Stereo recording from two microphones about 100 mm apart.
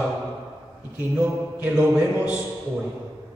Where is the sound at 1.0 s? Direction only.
15° right (ahead or behind).